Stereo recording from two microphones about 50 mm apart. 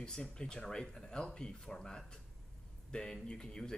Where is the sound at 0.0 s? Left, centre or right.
Centre.